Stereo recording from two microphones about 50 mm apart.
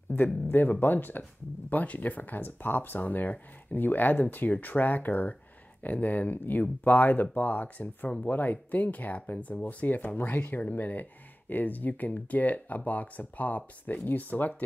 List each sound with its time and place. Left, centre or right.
0.1 s speech: left